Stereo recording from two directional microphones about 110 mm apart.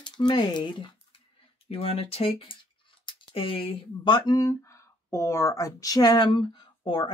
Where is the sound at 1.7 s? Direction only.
65° left (ahead or behind).